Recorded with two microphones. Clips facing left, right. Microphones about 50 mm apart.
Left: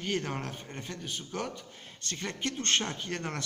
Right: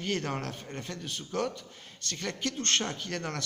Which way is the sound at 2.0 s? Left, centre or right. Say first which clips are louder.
Right 1 dB; centre.